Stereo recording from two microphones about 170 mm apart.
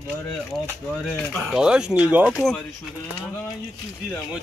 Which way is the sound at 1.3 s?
5° right (ahead or behind).